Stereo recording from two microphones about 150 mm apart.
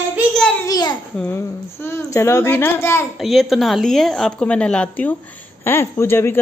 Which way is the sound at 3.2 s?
Centre (ahead or behind).